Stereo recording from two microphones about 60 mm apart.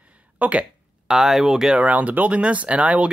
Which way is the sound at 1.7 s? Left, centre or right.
Right.